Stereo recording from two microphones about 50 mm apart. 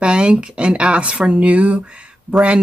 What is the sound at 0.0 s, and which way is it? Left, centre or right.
Speech, right.